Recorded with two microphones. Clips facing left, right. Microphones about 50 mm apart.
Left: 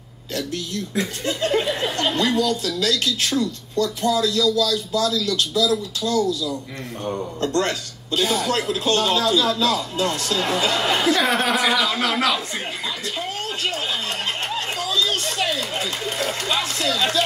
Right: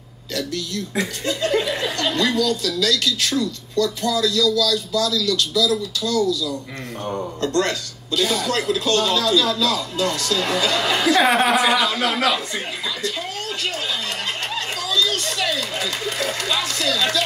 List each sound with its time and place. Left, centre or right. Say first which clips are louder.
1.2 s laughter: right 1 dB; left
1.8 s speech: even; left
7.5 s speech: right 2 dB; left
11.1 s speech: right 6 dB; right
11.5 s speech: right 2 dB; centre
14.8 s chatter: right 2 dB; left